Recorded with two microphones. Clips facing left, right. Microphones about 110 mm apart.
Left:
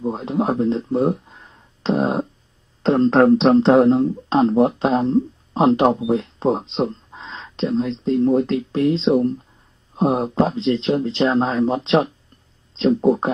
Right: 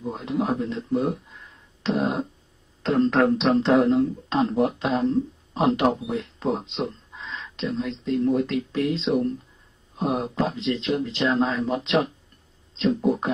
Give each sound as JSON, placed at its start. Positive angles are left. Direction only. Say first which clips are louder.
{"t": 0.1, "sound": "speech", "louder": "left 2 dB", "side_deg": 35}
{"t": 1.8, "sound": "a sound", "louder": "left 4 dB", "side_deg": 35}
{"t": 2.8, "sound": "speech", "louder": "left 5 dB", "side_deg": 30}